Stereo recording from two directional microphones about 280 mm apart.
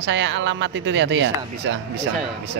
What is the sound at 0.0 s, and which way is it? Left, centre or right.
Speech, right.